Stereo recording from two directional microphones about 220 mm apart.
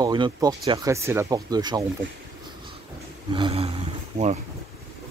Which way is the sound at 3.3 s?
25° right (ahead or behind).